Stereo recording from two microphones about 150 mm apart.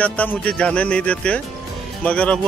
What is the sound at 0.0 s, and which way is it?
Speech, 10° left (ahead or behind).